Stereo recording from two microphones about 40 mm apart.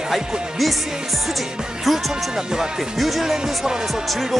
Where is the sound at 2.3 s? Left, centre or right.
Centre.